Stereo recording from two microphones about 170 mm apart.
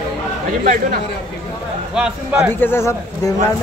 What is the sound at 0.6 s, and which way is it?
Speech, 60° right (ahead or behind).